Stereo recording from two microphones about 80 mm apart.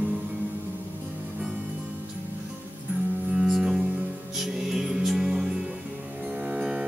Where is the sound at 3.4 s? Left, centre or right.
Centre.